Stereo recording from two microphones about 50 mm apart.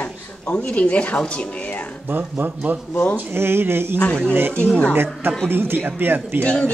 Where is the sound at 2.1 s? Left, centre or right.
Right.